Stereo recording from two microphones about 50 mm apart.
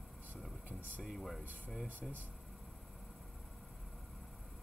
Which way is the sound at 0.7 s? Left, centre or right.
Left.